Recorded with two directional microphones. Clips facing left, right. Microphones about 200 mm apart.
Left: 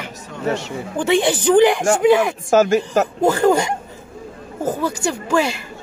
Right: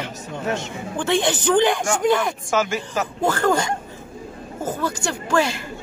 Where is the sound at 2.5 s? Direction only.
40° left (ahead or behind).